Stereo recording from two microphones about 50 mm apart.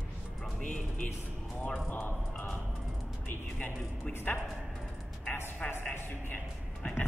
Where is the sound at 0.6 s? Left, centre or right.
Left.